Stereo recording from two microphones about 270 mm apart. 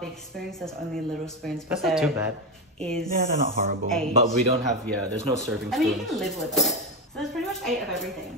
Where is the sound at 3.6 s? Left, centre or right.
Right.